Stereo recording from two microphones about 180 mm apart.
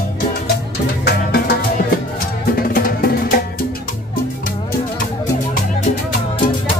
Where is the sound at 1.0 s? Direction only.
65° left (ahead or behind).